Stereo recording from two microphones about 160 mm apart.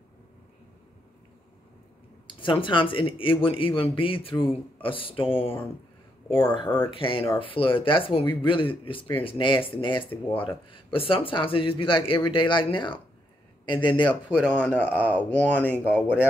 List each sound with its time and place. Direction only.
2.2 s speech: 30° left (ahead or behind)
14.5 s speech: 10° left (ahead or behind)
15.0 s speech: 10° right (ahead or behind)
15.3 s speech: 10° left (ahead or behind)